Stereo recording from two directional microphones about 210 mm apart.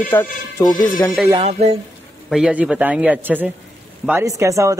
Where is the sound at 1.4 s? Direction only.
30° right (ahead or behind).